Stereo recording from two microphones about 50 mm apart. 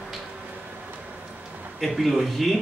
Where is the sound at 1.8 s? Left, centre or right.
Centre.